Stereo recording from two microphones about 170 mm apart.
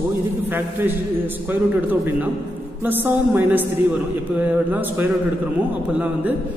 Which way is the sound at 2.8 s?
10° right (ahead or behind).